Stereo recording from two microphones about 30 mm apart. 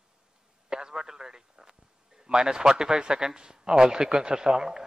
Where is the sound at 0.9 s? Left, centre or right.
Centre.